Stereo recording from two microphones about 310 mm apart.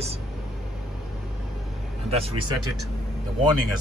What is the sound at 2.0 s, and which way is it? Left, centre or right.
Speech, centre.